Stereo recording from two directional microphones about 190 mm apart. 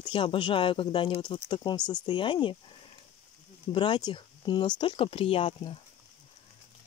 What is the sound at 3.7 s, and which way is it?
Speech, 25° left (ahead or behind).